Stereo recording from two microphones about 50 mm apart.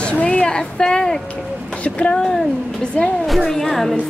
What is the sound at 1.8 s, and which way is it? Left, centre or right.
Speech, left.